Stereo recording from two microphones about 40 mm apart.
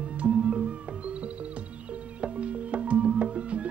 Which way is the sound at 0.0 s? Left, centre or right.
Right.